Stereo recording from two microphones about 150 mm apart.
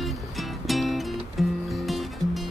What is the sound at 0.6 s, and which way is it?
Music, centre (ahead or behind).